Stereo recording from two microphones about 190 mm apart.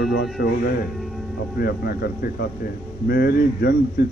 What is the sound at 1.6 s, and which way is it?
Speech, 55° left (ahead or behind).